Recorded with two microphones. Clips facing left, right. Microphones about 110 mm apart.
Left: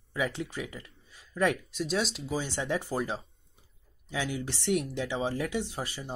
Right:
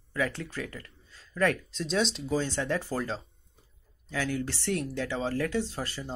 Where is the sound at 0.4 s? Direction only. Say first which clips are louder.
Left 1 dB; 15° left (ahead or behind).